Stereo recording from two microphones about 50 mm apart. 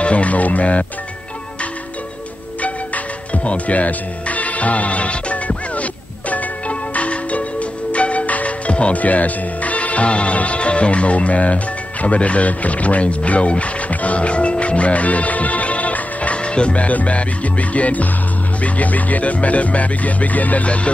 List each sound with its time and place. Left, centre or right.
0.0 s speech: left
3.4 s speech: left
6.3 s music: left
18.6 s speech: left